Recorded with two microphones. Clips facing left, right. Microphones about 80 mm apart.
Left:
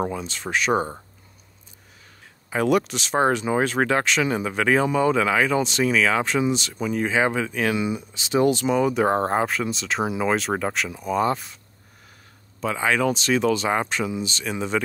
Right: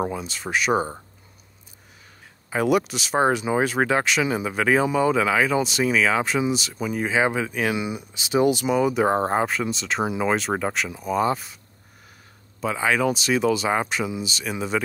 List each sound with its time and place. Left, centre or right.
0.0 s speech: centre
2.5 s speech: centre
12.5 s speech: centre